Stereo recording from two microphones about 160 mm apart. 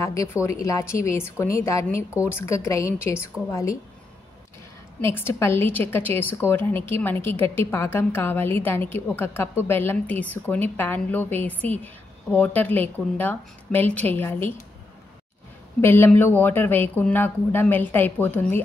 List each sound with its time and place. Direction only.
0.0 s a woman's voice: 20° left (ahead or behind)
5.0 s a woman's voice: 15° left (ahead or behind)
15.8 s a woman's voice: 15° left (ahead or behind)